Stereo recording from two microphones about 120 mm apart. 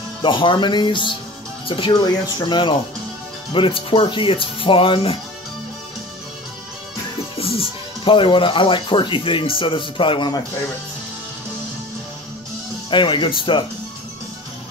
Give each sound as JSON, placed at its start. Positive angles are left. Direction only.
{"t": 0.2, "sound": "speech", "side_deg": 45}
{"t": 7.3, "sound": "speech", "side_deg": 50}
{"t": 12.9, "sound": "speech", "side_deg": 40}